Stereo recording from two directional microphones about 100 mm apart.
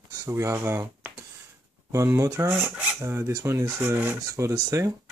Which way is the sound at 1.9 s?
30° right (ahead or behind).